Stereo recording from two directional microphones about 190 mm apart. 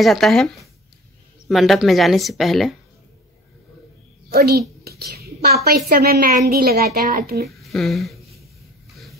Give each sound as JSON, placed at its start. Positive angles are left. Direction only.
{"t": 0.0, "sound": "speech", "side_deg": 0}
{"t": 4.3, "sound": "a child's voice", "side_deg": -55}
{"t": 7.4, "sound": "a woman's voice", "side_deg": 0}